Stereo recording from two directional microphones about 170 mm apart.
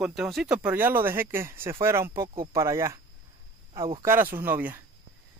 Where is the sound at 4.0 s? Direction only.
15° right (ahead or behind).